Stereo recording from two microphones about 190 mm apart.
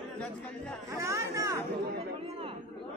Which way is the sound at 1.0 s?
15° right (ahead or behind).